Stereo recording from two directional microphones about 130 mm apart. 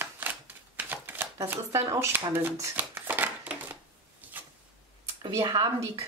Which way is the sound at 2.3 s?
15° right (ahead or behind).